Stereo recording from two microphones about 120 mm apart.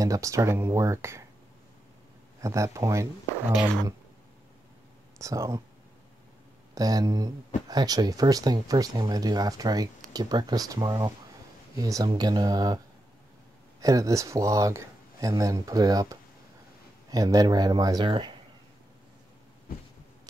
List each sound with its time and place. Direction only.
0.0 s speech: 25° right (ahead or behind)
2.4 s speech: 25° right (ahead or behind)
5.2 s speech: 25° right (ahead or behind)
6.7 s speech: 30° right (ahead or behind)